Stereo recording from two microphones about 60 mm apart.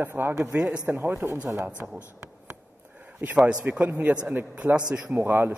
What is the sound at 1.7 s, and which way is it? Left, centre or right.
Speech, centre.